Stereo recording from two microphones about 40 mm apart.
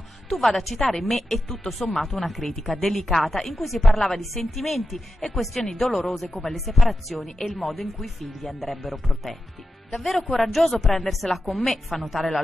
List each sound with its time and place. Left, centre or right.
0.3 s speech: centre